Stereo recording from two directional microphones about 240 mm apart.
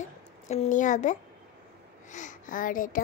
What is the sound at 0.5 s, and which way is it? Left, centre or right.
A woman's voice, left.